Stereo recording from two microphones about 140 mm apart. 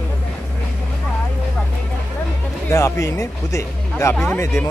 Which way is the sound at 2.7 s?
20° left (ahead or behind).